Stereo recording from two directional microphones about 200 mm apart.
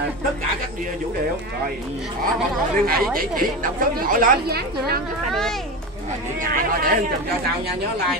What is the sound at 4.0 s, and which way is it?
Speech, 45° right (ahead or behind).